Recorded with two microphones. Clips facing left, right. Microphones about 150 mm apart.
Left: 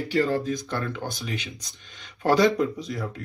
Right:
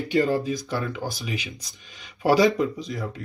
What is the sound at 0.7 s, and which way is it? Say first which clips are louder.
Speech: right 1 dB; 5° right (ahead or behind).